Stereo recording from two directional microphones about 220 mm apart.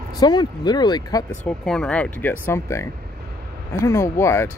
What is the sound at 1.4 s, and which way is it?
Speech, 5° left (ahead or behind).